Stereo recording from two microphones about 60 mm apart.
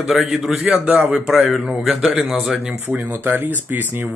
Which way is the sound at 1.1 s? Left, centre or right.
Centre.